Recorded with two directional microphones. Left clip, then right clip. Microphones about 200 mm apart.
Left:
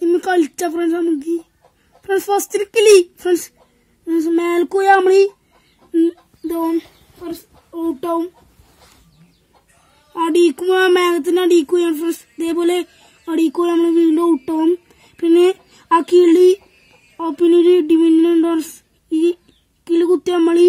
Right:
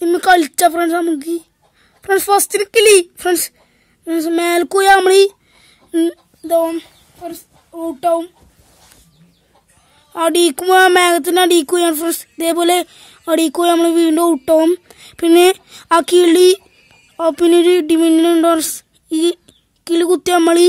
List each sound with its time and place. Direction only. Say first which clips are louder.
0.0 s speech: right 4 dB; 45° right (ahead or behind)
2.0 s speech: right 4 dB; 40° right (ahead or behind)
6.4 s a child's voice: right 5 dB; 30° right (ahead or behind)
10.1 s speech: right 1 dB; 50° right (ahead or behind)